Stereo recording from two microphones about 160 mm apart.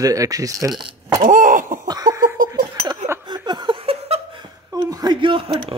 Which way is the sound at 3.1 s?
20° right (ahead or behind).